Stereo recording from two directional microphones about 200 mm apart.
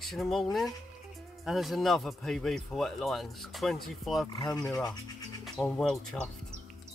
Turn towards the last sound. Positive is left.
turn(degrees=5)  # may be behind; listen again after turning